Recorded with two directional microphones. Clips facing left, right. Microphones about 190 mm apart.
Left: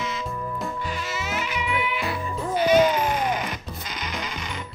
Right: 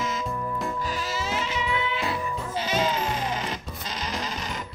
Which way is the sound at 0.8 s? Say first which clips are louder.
Right 1 dB; 35° right (ahead or behind).